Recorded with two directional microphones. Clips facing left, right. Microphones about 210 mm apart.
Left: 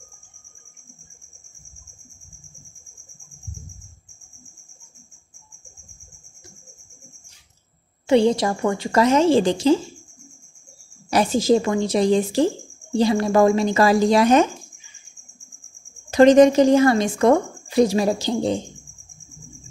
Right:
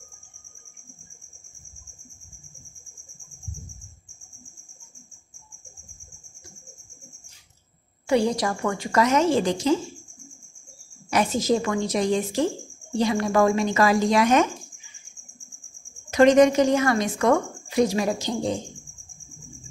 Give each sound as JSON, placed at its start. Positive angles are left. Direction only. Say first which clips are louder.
{"t": 8.1, "sound": "a woman's voice", "louder": "left 5 dB", "side_deg": 25}
{"t": 11.1, "sound": "speech", "louder": "left 4 dB", "side_deg": 30}
{"t": 16.1, "sound": "speech", "louder": "left 4 dB", "side_deg": 30}